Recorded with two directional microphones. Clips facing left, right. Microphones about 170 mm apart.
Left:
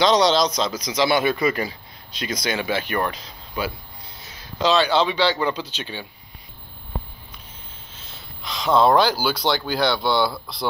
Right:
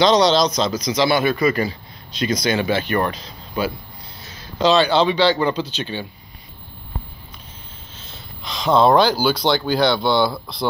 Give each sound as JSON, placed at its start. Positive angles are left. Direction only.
{"t": 0.0, "sound": "a man's voice", "side_deg": 10}
{"t": 8.5, "sound": "speech", "side_deg": 5}
{"t": 10.1, "sound": "speech", "side_deg": -20}